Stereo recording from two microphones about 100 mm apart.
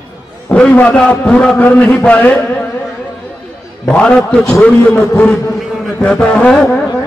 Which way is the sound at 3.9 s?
15° left (ahead or behind).